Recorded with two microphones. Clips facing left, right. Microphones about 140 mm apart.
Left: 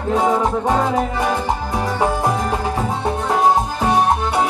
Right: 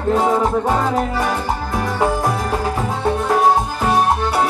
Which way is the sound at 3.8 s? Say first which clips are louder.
Even; 20° left (ahead or behind).